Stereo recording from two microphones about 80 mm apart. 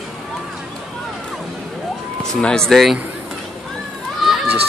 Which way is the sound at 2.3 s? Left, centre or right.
Centre.